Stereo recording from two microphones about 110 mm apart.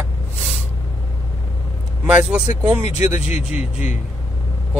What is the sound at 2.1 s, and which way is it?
Speech, 10° right (ahead or behind).